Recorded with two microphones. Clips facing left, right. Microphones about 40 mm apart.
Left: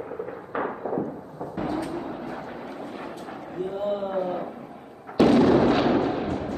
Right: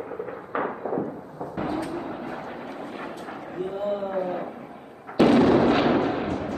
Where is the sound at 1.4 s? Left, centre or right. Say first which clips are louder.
Even; centre.